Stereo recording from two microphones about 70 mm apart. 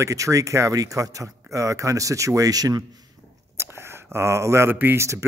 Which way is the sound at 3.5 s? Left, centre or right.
Right.